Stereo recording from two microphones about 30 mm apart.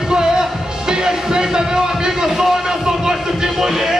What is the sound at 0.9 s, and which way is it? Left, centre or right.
Music, right.